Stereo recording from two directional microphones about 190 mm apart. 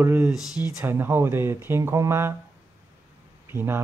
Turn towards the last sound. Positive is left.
turn(degrees=-10)  # may be behind; listen again after turning